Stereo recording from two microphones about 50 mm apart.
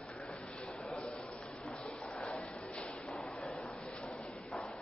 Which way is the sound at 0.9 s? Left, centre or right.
Left.